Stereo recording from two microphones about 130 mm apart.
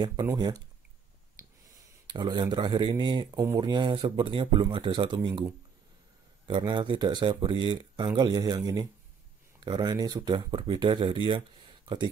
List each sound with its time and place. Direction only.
0.0 s speech: 30° right (ahead or behind)
1.4 s snort: 20° right (ahead or behind)
2.0 s speech: 35° right (ahead or behind)
6.4 s speech: 35° right (ahead or behind)